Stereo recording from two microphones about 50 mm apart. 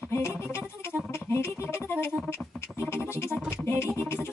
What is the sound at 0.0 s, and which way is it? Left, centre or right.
Music, left.